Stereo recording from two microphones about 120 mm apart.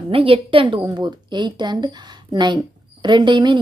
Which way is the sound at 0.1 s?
50° right (ahead or behind).